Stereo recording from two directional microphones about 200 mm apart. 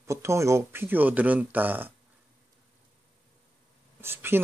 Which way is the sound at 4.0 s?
10° right (ahead or behind).